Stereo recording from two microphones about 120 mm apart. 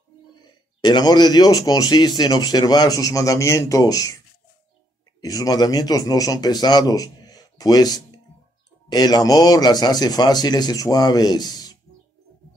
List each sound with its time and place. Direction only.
0.4 s a man's voice: 35° left (ahead or behind)
5.2 s a man's voice: 30° left (ahead or behind)